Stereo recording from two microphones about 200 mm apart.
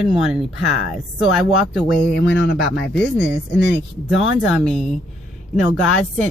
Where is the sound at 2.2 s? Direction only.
60° left (ahead or behind).